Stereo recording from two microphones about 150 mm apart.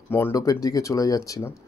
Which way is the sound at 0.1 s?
20° left (ahead or behind).